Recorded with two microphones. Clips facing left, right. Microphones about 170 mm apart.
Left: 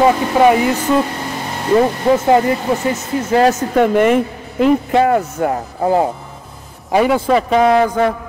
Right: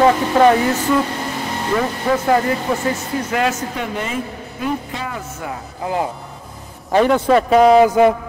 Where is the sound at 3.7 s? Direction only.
55° left (ahead or behind).